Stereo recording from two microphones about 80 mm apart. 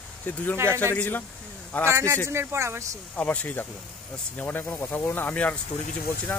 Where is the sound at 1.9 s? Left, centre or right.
Right.